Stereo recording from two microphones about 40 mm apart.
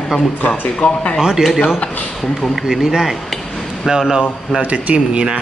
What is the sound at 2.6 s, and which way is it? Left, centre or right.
Speech, centre.